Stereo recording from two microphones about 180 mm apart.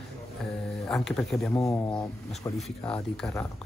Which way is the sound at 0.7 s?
Centre (ahead or behind).